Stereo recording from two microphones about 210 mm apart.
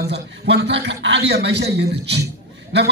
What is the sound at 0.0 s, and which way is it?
A man's voice, 55° right (ahead or behind).